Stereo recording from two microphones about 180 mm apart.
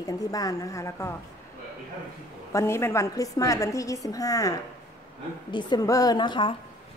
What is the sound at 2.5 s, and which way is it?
A woman's voice, 15° left (ahead or behind).